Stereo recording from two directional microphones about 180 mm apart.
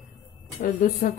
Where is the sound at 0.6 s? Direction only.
50° left (ahead or behind).